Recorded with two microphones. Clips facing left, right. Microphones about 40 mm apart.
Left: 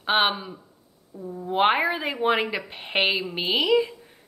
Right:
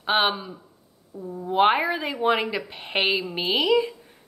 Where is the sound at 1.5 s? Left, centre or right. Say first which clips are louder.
Right 1 dB; centre.